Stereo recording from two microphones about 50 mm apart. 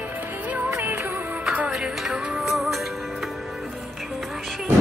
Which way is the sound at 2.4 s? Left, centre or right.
Centre.